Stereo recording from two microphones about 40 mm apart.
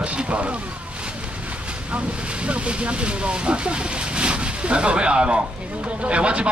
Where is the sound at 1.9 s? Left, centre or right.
Right.